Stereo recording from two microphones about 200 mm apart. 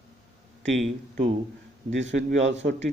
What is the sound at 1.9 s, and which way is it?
Speech, 65° right (ahead or behind).